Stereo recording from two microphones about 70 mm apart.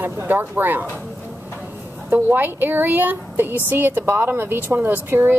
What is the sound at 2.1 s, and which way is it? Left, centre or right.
A woman's voice, right.